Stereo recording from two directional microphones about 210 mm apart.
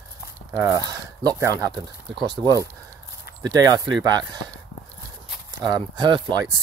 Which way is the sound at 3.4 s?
20° right (ahead or behind).